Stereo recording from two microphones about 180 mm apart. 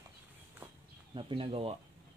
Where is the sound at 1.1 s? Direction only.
30° right (ahead or behind).